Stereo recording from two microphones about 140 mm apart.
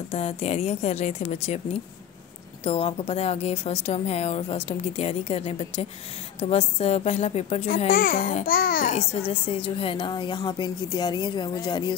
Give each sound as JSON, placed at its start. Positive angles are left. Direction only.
{"t": 0.1, "sound": "speech", "side_deg": 45}
{"t": 2.6, "sound": "speech", "side_deg": 45}
{"t": 7.9, "sound": "a child's voice", "side_deg": 90}
{"t": 8.9, "sound": "a woman's voice", "side_deg": 50}